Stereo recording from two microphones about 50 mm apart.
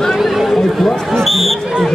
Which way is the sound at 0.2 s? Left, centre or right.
Centre.